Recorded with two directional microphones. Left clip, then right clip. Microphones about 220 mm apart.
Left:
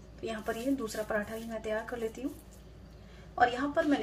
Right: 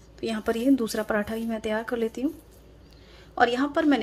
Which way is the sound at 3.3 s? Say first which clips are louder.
Right 5 dB; 50° right (ahead or behind).